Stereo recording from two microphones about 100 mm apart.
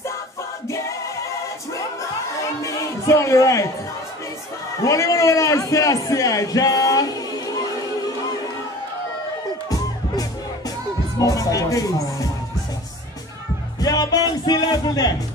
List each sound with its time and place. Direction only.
0.7 s music: 30° left (ahead or behind)
4.8 s a sound: 30° left (ahead or behind)
11.1 s music: 35° left (ahead or behind)
13.7 s music: 40° left (ahead or behind)